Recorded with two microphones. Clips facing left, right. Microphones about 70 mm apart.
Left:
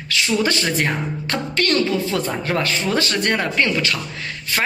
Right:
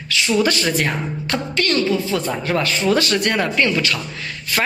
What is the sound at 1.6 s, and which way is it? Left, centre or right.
Speech, left.